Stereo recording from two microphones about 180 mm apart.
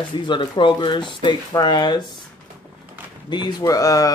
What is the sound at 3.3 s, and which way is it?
Speech, 20° left (ahead or behind).